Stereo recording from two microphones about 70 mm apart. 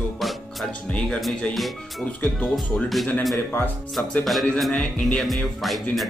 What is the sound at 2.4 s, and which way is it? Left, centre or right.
Speech, centre.